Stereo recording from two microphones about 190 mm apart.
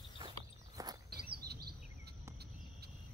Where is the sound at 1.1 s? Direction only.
55° right (ahead or behind).